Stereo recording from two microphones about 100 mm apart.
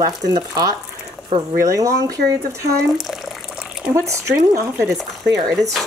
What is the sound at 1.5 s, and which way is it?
Speech, 35° right (ahead or behind).